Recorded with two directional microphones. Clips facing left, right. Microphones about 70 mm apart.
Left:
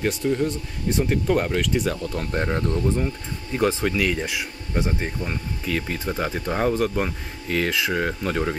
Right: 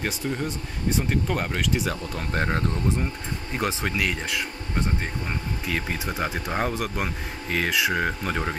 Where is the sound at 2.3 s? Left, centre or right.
Right.